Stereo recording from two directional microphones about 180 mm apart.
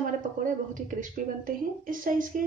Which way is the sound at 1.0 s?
50° right (ahead or behind).